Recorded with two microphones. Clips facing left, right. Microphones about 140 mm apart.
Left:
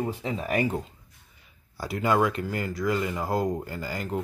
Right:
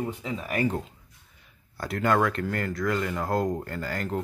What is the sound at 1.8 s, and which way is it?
Speech, centre (ahead or behind).